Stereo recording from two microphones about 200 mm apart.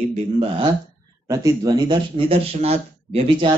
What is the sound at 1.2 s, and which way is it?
Speech, 15° right (ahead or behind).